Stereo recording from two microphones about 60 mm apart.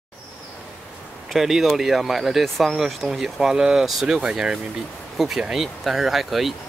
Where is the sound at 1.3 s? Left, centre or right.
Centre.